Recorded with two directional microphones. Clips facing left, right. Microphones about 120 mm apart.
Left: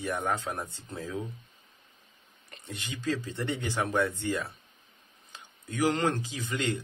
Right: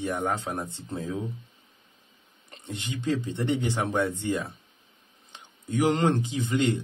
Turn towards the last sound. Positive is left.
turn(degrees=-25)  # may be behind; listen again after turning